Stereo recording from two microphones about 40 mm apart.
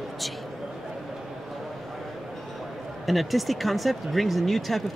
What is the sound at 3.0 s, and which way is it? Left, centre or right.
Speech, centre.